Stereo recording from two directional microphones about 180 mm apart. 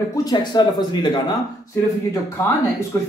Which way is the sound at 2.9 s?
15° left (ahead or behind).